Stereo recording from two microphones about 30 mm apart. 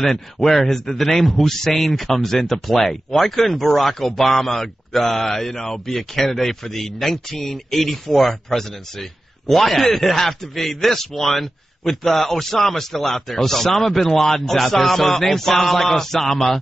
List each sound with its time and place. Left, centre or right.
0.0 s speech: centre